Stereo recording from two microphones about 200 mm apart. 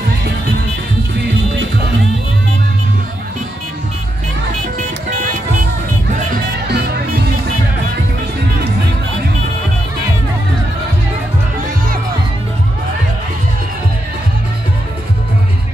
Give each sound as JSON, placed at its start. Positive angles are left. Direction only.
{"t": 6.3, "sound": "music", "side_deg": -55}